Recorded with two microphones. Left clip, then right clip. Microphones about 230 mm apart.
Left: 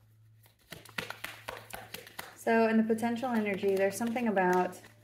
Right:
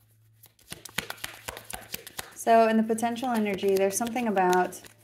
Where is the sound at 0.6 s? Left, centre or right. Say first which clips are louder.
Right 5 dB; right.